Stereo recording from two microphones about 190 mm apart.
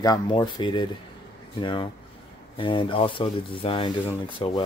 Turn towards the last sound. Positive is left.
turn(degrees=25)  # may be behind; listen again after turning